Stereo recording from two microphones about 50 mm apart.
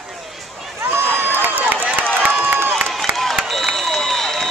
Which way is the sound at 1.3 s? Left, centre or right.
Right.